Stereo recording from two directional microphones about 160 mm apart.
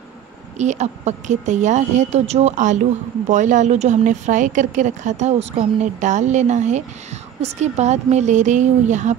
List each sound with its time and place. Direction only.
0.6 s a woman's voice: 45° right (ahead or behind)